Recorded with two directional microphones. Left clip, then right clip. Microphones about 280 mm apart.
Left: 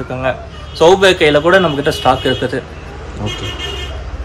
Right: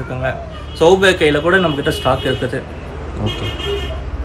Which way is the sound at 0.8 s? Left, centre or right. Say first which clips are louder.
Left 2 dB; left.